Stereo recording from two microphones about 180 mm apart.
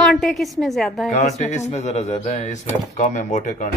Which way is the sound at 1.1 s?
40° left (ahead or behind).